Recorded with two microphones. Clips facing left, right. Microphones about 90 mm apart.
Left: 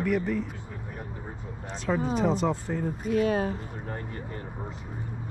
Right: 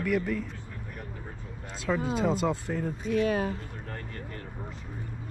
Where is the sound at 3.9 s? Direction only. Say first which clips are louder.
Left 4 dB; 20° left (ahead or behind).